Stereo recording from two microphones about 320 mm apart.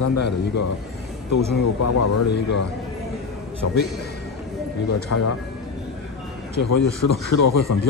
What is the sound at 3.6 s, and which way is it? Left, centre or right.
Speech, left.